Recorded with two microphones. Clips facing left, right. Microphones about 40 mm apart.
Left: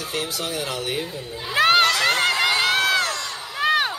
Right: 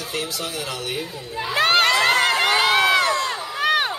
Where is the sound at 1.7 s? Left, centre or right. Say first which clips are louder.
Right 3 dB; right.